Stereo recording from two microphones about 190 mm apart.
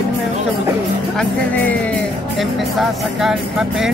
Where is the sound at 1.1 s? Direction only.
5° left (ahead or behind).